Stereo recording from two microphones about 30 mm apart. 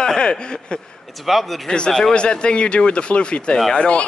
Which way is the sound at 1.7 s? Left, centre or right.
Left.